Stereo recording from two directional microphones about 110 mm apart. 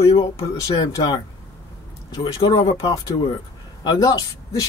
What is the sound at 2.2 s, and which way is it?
Speech, 40° left (ahead or behind).